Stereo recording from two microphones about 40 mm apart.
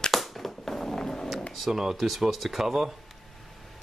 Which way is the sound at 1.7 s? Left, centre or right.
Centre.